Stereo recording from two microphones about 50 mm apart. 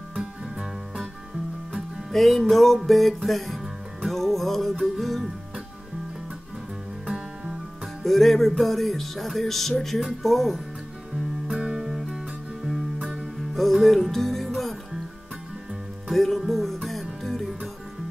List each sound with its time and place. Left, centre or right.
0.1 s music: centre
2.1 s music: centre
8.0 s music: centre
11.5 s music: centre
13.6 s music: centre
16.1 s music: centre